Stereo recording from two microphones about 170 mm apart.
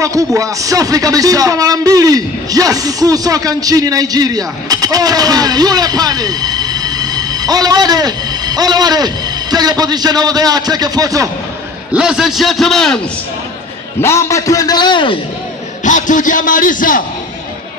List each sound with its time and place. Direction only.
0.0 s a man's voice: 20° right (ahead or behind)
11.9 s a man's voice: 5° right (ahead or behind)
14.0 s a man's voice: 15° left (ahead or behind)
15.8 s a man's voice: 50° left (ahead or behind)